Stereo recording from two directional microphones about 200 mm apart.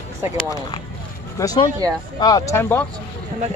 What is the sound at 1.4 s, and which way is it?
Speech, 20° left (ahead or behind).